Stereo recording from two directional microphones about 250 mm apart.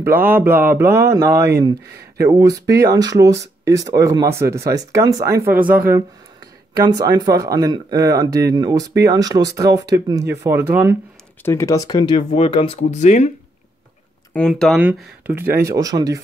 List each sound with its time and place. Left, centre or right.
0.0 s speech: centre
5.6 s speech: right
6.7 s speech: centre
11.4 s speech: centre; by 13.3 s left
14.3 s speech: centre